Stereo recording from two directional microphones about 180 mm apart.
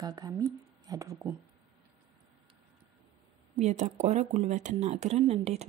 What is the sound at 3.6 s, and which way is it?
Speech, 40° right (ahead or behind).